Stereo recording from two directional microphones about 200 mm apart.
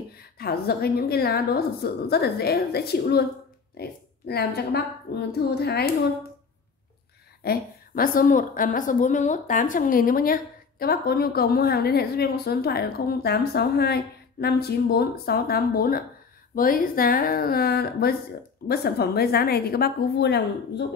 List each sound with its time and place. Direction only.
0.1 s a woman's voice: 50° left (ahead or behind)
4.3 s a woman's voice: 55° left (ahead or behind)
7.4 s a woman's voice: 45° left (ahead or behind)